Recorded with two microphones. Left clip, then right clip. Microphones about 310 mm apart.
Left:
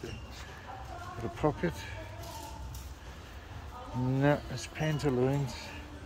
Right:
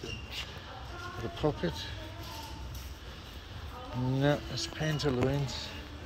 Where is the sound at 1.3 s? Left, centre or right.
Centre.